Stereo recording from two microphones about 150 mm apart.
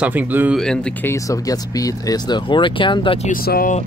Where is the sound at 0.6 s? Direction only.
5° left (ahead or behind); by 3.2 s 35° left (ahead or behind).